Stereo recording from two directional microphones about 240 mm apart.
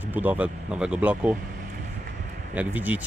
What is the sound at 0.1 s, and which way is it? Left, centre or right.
Speech, centre.